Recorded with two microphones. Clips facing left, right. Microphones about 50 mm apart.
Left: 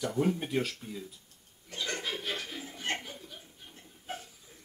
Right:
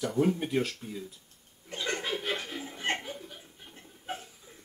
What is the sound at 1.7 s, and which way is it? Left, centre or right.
Chuckle, right.